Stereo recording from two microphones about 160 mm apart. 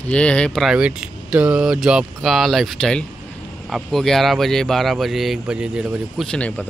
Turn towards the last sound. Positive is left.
turn(degrees=10)  # may be behind; listen again after turning